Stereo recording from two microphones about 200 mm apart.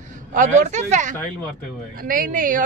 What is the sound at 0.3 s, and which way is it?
Speech, 40° right (ahead or behind).